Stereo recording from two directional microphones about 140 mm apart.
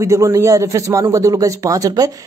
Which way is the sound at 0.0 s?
25° right (ahead or behind).